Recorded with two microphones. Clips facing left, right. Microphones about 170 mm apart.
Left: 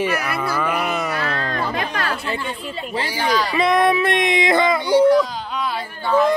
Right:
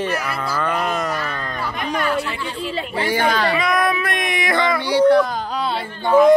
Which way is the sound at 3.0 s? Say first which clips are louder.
Right 3 dB; 55° right (ahead or behind).